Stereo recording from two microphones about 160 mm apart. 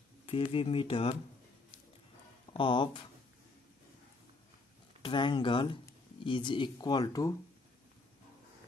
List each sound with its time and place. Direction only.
0.3 s speech: 35° left (ahead or behind)
2.5 s speech: 30° left (ahead or behind)
5.0 s speech: 30° left (ahead or behind)